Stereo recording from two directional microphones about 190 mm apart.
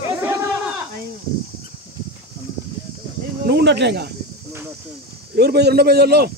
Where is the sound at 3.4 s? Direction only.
60° right (ahead or behind).